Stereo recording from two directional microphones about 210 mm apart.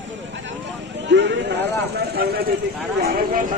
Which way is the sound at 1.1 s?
55° right (ahead or behind).